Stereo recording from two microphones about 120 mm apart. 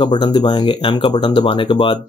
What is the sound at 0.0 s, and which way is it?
Speech, 45° left (ahead or behind).